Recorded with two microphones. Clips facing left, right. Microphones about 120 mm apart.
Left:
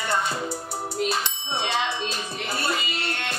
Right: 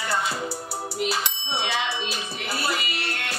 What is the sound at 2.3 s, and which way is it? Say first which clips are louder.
Speech: even; 25° left (ahead or behind).